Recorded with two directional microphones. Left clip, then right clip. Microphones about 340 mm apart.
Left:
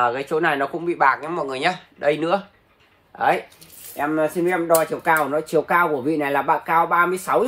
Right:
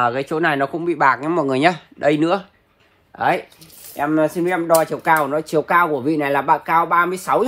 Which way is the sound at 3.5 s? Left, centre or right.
Centre.